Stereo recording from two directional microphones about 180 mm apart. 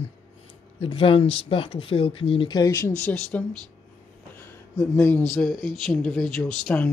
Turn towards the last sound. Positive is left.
turn(degrees=5)  # may be behind; listen again after turning